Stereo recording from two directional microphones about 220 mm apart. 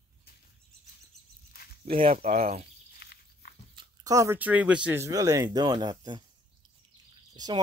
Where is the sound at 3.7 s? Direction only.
20° right (ahead or behind).